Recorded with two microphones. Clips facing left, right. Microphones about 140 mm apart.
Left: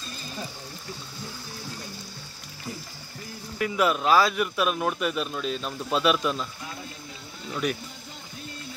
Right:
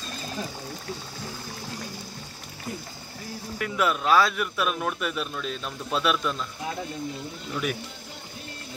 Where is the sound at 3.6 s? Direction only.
Centre (ahead or behind).